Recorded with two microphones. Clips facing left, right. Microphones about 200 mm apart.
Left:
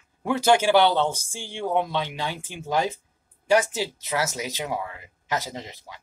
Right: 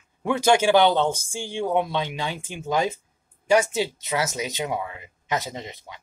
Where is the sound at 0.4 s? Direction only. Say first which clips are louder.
Right 1 dB; 15° right (ahead or behind).